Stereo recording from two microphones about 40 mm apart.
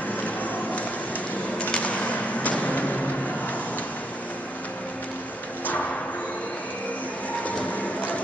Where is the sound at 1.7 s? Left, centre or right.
Left.